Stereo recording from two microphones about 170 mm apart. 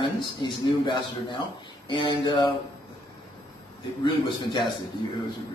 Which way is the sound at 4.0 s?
25° left (ahead or behind).